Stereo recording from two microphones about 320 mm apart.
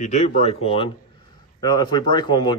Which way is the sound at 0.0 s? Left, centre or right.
Left.